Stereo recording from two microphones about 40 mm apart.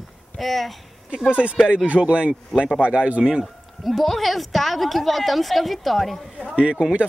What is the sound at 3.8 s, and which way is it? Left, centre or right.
Speech, centre.